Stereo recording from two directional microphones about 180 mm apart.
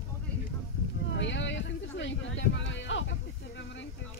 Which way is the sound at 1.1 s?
90° left.